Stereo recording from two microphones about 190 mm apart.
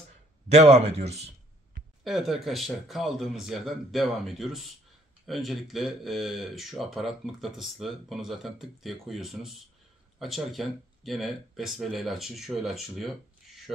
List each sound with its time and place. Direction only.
0.5 s speech: 35° right (ahead or behind)
2.0 s speech: centre (ahead or behind)